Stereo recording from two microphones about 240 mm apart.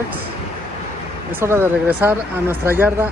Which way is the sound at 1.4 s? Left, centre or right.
Centre.